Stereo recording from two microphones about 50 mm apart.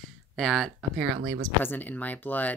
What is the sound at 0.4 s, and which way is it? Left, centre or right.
Speech, centre.